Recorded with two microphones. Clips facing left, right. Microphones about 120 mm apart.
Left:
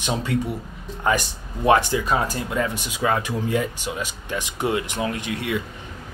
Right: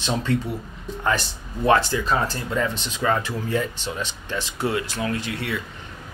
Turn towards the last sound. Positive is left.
turn(degrees=15)  # may be behind; listen again after turning